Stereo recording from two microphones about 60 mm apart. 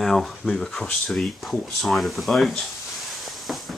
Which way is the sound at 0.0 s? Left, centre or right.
Centre.